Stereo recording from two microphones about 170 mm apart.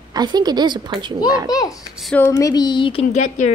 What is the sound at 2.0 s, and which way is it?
Speech, 10° left (ahead or behind).